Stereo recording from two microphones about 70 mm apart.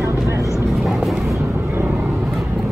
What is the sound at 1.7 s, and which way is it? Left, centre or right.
Vehicle, right.